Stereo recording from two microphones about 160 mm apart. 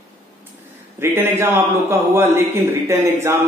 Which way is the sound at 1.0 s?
15° right (ahead or behind).